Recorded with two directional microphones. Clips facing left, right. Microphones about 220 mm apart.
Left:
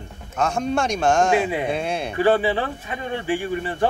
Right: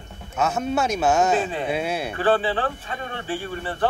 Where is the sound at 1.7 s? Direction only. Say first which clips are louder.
Even; 5° right (ahead or behind).